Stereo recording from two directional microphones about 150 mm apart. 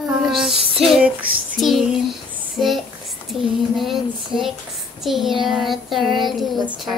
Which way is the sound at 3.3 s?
5° right (ahead or behind).